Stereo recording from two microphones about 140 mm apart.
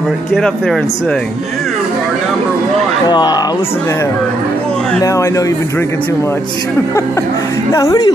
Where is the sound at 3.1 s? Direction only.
30° left (ahead or behind).